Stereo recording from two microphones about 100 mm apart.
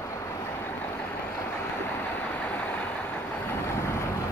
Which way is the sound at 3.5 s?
25° left (ahead or behind).